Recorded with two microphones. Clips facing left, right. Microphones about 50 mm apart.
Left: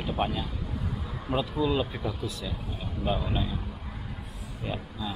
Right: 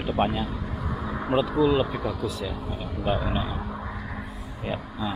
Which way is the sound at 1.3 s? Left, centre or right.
Right.